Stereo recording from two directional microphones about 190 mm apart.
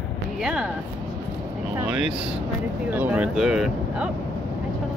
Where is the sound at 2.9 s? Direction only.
10° right (ahead or behind).